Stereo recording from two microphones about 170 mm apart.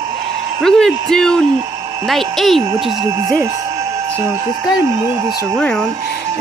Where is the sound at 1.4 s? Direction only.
20° right (ahead or behind).